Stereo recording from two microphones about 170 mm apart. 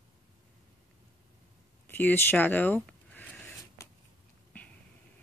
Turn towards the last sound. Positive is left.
turn(degrees=10)  # may be behind; listen again after turning